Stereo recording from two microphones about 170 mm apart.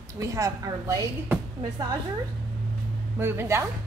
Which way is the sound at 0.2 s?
20° right (ahead or behind).